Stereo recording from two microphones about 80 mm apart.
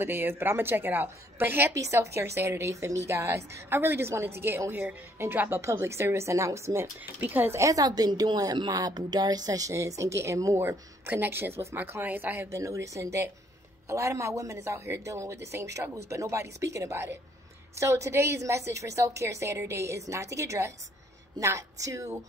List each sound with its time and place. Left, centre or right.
0.0 s a woman's voice: right
1.7 s a woman's voice: right
7.2 s a woman's voice: right
7.5 s a woman's voice: right
7.8 s a woman's voice: right
12.5 s a woman's voice: right